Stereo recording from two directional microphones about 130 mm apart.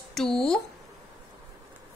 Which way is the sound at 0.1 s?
5° left (ahead or behind).